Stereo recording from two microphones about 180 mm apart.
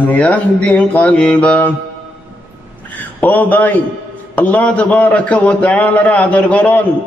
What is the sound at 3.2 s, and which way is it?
A man's voice, 10° left (ahead or behind).